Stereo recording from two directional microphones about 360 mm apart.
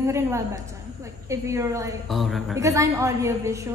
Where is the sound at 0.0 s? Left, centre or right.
Centre.